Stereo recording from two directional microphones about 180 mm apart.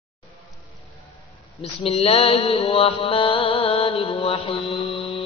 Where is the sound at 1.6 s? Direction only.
30° left (ahead or behind).